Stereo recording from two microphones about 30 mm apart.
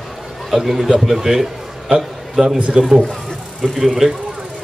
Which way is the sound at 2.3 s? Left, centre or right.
Right.